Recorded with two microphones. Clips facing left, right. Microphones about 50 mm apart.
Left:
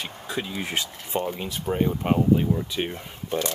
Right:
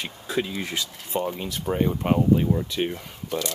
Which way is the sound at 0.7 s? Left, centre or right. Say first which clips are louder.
Left 1 dB; left.